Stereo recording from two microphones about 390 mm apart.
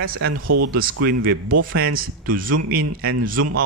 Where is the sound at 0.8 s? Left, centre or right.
Right.